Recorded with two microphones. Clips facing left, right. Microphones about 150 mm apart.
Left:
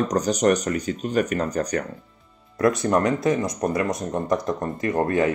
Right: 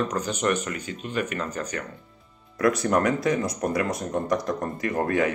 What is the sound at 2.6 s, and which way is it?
Speech, 25° left (ahead or behind).